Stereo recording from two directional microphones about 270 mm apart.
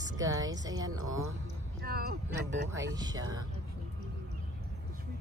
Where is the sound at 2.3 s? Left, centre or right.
Right.